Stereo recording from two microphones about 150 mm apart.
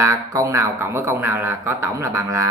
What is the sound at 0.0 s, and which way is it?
Speech, 20° right (ahead or behind).